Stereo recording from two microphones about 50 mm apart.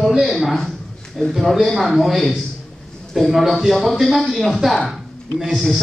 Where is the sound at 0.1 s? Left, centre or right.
Centre.